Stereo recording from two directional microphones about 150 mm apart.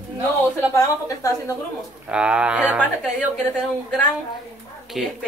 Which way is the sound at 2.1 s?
5° right (ahead or behind).